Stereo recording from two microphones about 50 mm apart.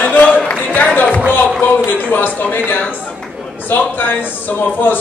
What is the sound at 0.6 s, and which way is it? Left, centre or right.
Music, left.